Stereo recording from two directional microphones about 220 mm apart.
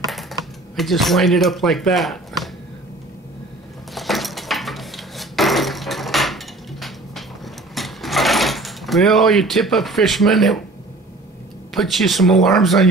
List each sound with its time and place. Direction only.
0.0 s typing: centre (ahead or behind)
3.9 s dishes: centre (ahead or behind)
7.7 s sewing machine: centre (ahead or behind)
11.7 s speech: centre (ahead or behind)